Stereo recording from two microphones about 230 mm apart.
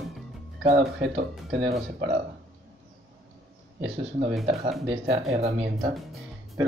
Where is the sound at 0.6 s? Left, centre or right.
Right.